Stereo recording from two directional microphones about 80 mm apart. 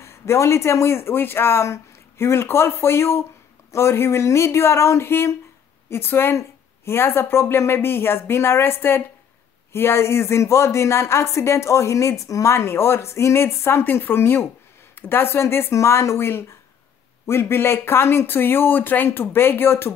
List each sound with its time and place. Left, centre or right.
0.0 s a woman's voice: left